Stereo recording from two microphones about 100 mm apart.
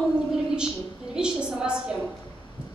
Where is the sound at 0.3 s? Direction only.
5° right (ahead or behind).